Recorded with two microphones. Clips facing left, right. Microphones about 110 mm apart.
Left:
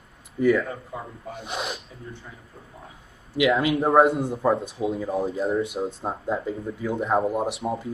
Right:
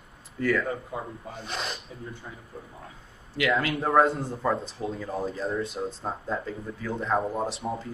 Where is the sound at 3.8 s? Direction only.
25° left (ahead or behind).